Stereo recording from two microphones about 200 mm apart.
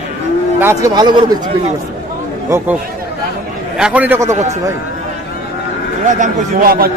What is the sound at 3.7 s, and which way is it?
Speech, 5° right (ahead or behind).